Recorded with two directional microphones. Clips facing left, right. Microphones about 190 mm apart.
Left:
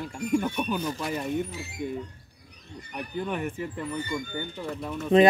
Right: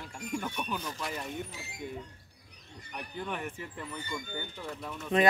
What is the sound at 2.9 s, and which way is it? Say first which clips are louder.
Speech: left 6 dB; 10° left (ahead or behind).